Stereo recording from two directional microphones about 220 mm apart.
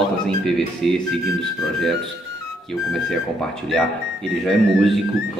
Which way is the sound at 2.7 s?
Centre (ahead or behind).